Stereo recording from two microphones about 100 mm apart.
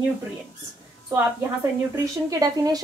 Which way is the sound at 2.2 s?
35° right (ahead or behind).